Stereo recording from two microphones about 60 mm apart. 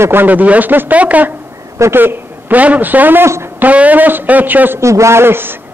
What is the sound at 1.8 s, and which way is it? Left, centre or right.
A man's voice, right.